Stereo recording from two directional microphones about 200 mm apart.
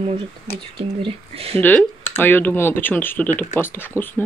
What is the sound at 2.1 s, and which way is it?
Speech, 10° left (ahead or behind).